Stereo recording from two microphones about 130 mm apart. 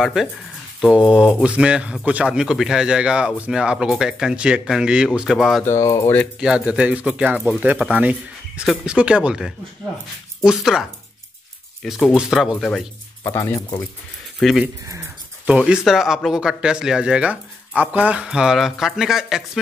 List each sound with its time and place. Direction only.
0.0 s speech: centre (ahead or behind)
5.6 s speech: 20° left (ahead or behind)
6.4 s speech: 5° right (ahead or behind)
13.2 s speech: 20° left (ahead or behind)
14.4 s speech: centre (ahead or behind)